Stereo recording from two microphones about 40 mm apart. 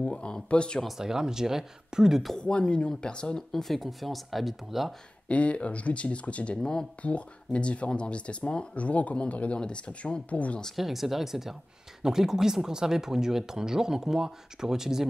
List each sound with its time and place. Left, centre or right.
0.0 s speech: left
0.9 s speech: centre
2.3 s speech: left
3.6 s speech: centre
5.3 s speech: left
6.6 s speech: centre
7.0 s speech: left
8.8 s speech: left
10.8 s speech: centre